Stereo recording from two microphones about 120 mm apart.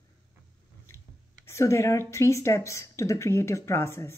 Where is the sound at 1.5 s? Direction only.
25° left (ahead or behind).